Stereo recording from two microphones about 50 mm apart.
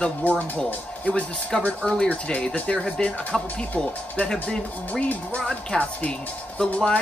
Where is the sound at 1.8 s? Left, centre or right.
Centre.